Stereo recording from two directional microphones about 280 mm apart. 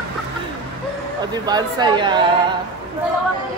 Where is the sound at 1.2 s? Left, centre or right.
Centre.